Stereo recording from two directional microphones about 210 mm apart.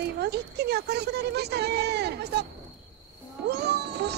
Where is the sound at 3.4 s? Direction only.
50° right (ahead or behind).